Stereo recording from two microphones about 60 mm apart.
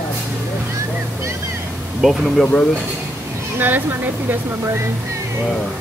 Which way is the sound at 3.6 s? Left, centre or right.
Right.